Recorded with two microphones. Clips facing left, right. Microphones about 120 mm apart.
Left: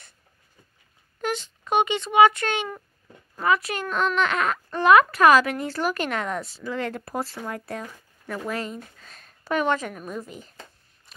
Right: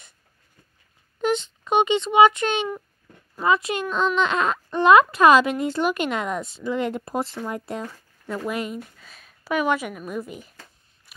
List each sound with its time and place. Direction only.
1.2 s speech: 20° right (ahead or behind)
9.0 s speech: 5° right (ahead or behind)